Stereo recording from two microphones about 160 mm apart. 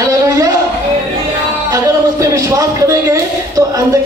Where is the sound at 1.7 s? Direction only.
20° right (ahead or behind).